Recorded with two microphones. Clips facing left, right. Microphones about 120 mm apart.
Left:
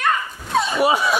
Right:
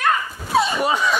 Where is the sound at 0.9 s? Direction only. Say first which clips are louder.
Left 1 dB; 10° left (ahead or behind).